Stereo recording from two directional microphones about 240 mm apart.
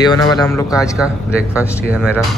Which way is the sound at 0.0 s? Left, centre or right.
Centre.